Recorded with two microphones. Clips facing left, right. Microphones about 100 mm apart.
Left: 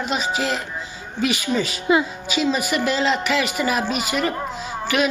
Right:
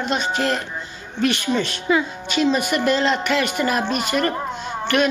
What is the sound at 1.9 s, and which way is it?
Speech, 15° left (ahead or behind).